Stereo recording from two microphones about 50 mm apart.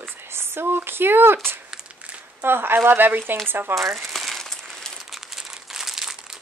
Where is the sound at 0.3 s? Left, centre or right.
Right.